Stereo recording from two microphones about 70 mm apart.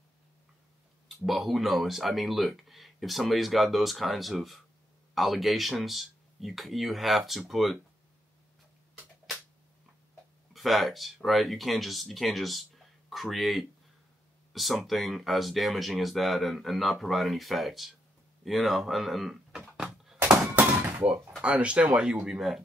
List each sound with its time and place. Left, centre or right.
1.2 s speech: centre
10.5 s speech: centre
20.2 s thunk: right
21.4 s speech: centre